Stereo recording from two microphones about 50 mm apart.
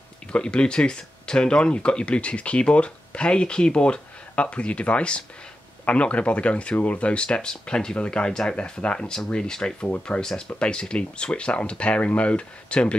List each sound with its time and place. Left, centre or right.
0.3 s speech: left